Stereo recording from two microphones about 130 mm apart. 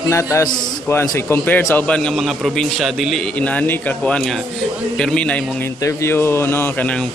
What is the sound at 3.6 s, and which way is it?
Speech, 10° left (ahead or behind).